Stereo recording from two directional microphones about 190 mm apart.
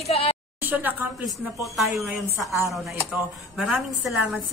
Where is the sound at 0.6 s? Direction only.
10° right (ahead or behind).